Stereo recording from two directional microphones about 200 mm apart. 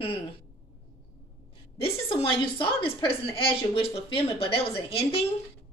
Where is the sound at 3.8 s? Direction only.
25° left (ahead or behind).